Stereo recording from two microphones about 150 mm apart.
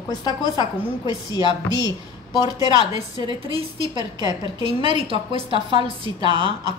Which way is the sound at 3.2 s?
35° right (ahead or behind).